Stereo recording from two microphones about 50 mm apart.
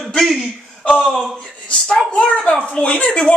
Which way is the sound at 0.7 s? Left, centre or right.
Centre.